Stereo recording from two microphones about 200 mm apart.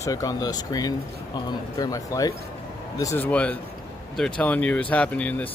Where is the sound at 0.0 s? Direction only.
15° left (ahead or behind).